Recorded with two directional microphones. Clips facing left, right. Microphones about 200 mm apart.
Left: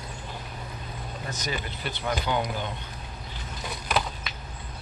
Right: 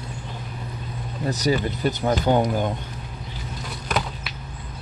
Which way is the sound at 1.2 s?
35° right (ahead or behind).